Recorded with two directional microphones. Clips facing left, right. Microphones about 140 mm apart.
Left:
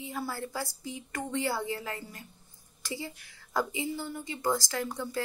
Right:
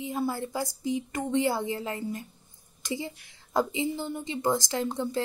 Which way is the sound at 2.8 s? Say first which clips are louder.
Right 5 dB; 20° right (ahead or behind).